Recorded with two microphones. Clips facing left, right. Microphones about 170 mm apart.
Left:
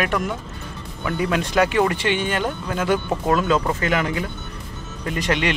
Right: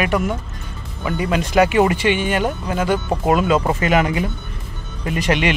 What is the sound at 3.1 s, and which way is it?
Speech, 15° right (ahead or behind).